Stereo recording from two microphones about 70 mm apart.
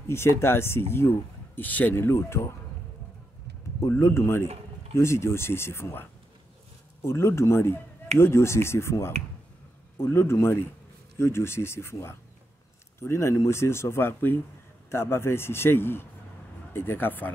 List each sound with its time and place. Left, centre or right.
0.1 s speech: left
4.0 s speech: left
7.1 s speech: left